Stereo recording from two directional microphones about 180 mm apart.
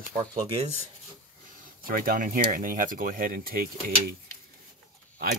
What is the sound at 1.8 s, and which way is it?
Speech, 50° right (ahead or behind).